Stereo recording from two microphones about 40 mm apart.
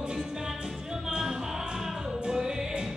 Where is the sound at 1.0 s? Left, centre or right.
Centre.